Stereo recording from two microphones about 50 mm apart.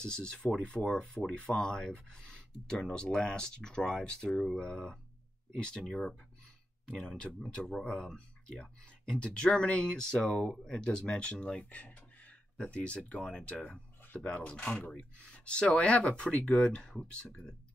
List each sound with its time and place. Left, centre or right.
0.0 s speech: centre
5.9 s speech: centre
6.9 s speech: centre
10.2 s speech: centre
13.7 s a sound: left
14.2 s speech: left